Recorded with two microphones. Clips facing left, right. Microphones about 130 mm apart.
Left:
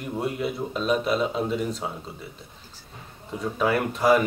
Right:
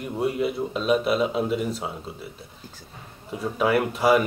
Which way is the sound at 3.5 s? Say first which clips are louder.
Right 2 dB; 10° right (ahead or behind).